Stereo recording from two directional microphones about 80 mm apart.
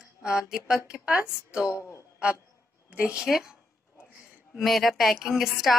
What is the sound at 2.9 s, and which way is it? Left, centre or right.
Speech, centre.